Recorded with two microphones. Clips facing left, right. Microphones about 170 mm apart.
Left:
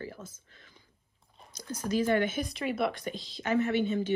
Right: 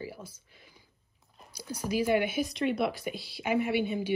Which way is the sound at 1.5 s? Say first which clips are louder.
Left 1 dB; 10° right (ahead or behind).